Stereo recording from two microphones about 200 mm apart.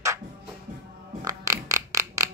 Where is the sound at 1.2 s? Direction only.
15° right (ahead or behind).